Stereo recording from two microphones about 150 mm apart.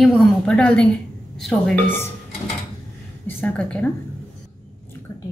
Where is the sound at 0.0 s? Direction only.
5° left (ahead or behind).